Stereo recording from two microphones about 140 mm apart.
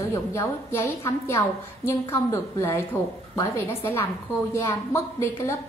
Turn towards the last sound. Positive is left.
turn(degrees=20)  # may be behind; listen again after turning